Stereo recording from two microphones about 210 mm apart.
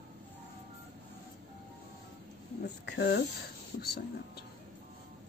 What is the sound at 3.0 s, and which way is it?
Speech, 55° left (ahead or behind).